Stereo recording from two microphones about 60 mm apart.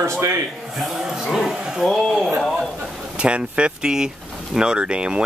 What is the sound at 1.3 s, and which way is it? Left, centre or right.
Speech, centre.